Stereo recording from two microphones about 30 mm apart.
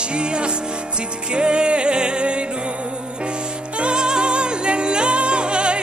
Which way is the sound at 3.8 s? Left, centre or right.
Right.